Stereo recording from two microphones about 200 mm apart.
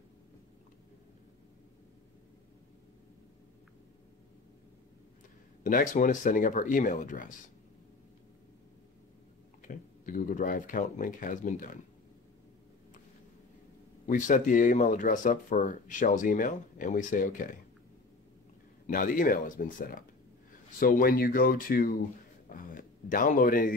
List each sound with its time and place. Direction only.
5.6 s speech: 45° left (ahead or behind)
9.6 s speech: 40° left (ahead or behind)
14.0 s speech: 40° left (ahead or behind)
18.9 s speech: 45° left (ahead or behind)